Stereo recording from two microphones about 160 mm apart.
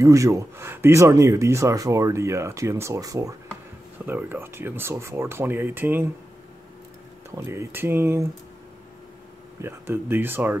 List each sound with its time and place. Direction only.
0.0 s speech: 20° right (ahead or behind)
7.2 s speech: 15° right (ahead or behind)
9.6 s speech: 15° right (ahead or behind)